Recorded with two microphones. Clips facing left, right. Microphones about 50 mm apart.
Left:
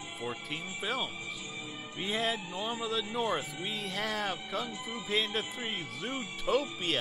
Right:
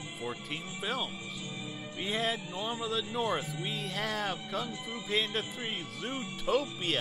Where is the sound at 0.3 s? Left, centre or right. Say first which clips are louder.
Left 2 dB; centre.